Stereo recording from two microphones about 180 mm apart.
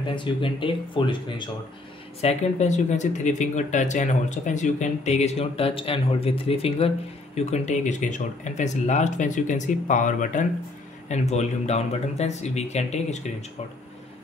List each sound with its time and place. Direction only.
0.0 s speech: 25° left (ahead or behind)
2.2 s speech: 40° left (ahead or behind)